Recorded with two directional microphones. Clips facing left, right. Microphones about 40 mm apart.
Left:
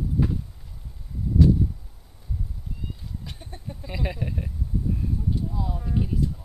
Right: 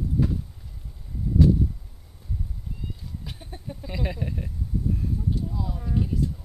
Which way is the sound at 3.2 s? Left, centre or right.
Centre.